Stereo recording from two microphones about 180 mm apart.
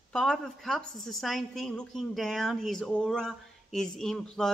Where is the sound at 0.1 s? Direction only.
5° left (ahead or behind).